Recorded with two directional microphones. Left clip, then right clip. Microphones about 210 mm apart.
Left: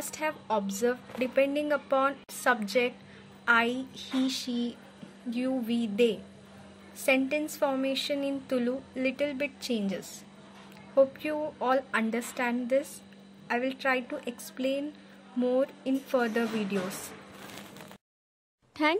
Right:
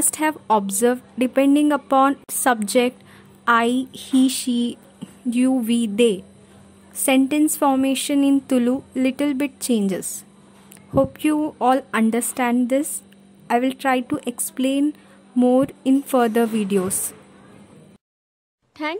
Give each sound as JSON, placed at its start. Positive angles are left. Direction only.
{"t": 0.1, "sound": "a woman's voice", "side_deg": -45}
{"t": 18.8, "sound": "a child's voice", "side_deg": 0}